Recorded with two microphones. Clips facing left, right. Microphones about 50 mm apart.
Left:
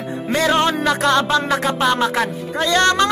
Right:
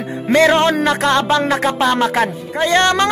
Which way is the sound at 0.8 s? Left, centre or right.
Right.